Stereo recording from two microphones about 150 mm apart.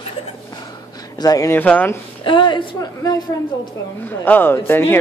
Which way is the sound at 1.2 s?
25° left (ahead or behind).